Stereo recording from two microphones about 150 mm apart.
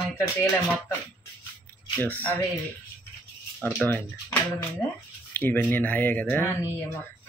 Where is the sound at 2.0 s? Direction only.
10° left (ahead or behind).